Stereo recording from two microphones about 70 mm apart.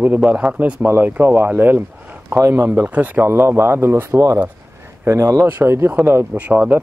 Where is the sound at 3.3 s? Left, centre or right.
Right.